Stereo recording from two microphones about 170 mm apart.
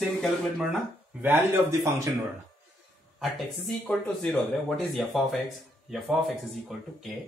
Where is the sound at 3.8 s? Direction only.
5° left (ahead or behind).